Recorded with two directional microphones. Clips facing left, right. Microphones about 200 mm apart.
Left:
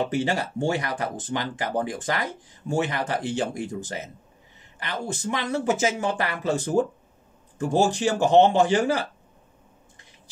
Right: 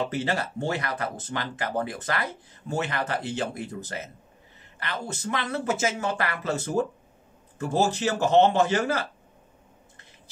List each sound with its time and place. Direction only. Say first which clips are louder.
0.1 s speech: left 3 dB; 15° left (ahead or behind)